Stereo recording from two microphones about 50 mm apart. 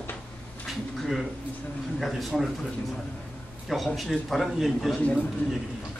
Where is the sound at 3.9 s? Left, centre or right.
Centre.